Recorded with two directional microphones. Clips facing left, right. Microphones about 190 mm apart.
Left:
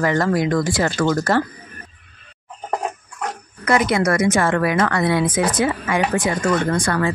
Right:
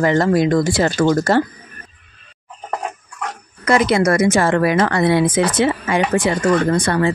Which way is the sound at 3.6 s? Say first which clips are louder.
Right 3 dB; 30° right (ahead or behind).